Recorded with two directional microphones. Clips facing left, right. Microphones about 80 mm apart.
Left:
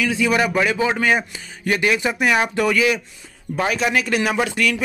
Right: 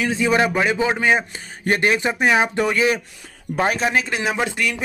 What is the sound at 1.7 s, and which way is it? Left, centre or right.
Speech, right.